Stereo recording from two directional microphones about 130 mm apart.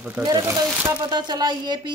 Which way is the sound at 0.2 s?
30° right (ahead or behind).